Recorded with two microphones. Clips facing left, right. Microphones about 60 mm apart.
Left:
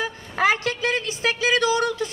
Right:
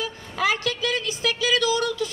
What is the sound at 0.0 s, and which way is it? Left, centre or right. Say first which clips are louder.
A woman's voice: left 3 dB; left.